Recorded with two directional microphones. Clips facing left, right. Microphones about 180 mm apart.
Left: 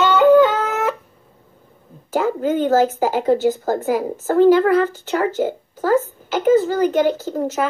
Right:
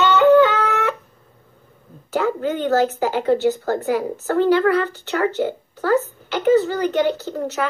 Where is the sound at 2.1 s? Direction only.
45° left (ahead or behind).